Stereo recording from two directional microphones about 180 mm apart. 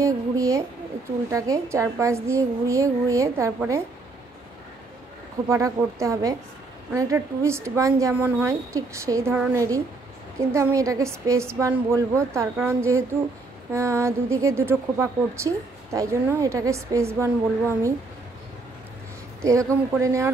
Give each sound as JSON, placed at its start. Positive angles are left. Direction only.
{"t": 0.0, "sound": "a woman's voice", "side_deg": -15}
{"t": 5.5, "sound": "speech", "side_deg": -15}
{"t": 19.4, "sound": "speech", "side_deg": -15}